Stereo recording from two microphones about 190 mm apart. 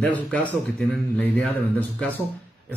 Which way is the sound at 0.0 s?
10° left (ahead or behind).